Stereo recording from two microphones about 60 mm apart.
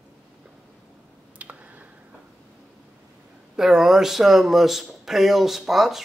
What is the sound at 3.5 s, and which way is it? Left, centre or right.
Speech, centre.